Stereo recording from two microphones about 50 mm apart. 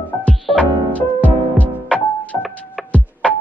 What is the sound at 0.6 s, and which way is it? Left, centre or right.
Music, left.